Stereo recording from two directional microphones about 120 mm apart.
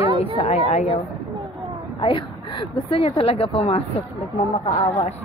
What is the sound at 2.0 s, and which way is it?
Speech, 45° left (ahead or behind).